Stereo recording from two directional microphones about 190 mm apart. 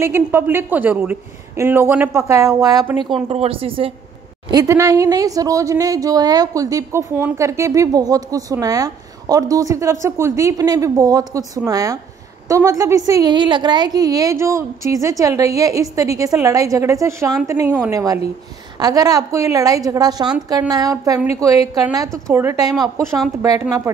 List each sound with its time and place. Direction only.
0.0 s speech: 10° right (ahead or behind)
3.3 s a woman's voice: 30° right (ahead or behind)
4.5 s a woman's voice: 15° right (ahead or behind)